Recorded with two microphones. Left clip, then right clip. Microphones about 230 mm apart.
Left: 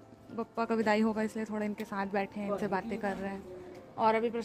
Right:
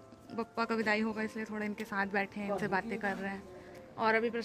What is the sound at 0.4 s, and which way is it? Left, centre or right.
A woman's voice, centre.